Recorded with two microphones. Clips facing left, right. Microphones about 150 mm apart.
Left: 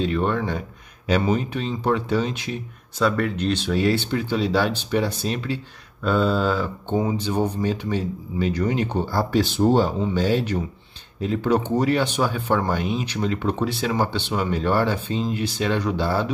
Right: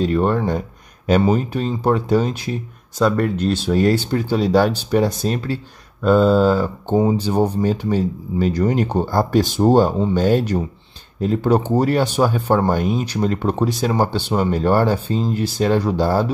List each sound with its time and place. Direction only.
0.0 s speech: 40° right (ahead or behind)